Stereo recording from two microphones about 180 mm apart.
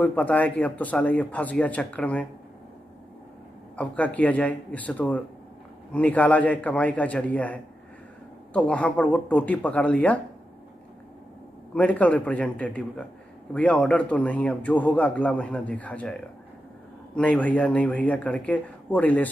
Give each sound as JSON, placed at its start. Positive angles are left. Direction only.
{"t": 0.0, "sound": "a man's voice", "side_deg": 10}
{"t": 3.7, "sound": "a man's voice", "side_deg": 10}
{"t": 11.7, "sound": "a man's voice", "side_deg": 10}